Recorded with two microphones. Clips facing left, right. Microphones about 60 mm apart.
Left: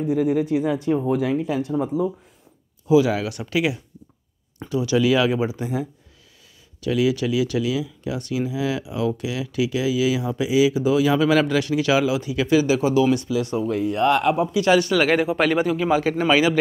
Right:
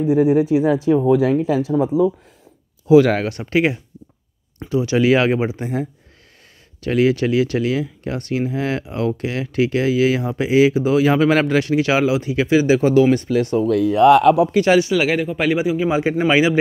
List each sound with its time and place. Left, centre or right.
0.0 s speech: right
2.9 s speech: right
14.4 s speech: right
14.8 s speech: centre
15.9 s a man's voice: right